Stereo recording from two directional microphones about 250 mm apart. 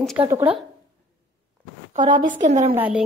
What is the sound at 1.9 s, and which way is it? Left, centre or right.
Speech, centre.